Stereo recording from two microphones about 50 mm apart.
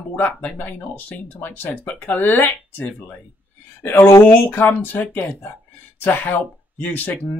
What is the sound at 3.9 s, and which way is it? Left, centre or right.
Speech, left.